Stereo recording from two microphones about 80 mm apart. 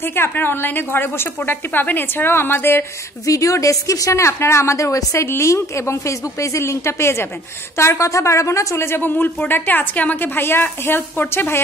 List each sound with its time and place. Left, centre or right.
0.0 s speech: left
3.3 s speech: left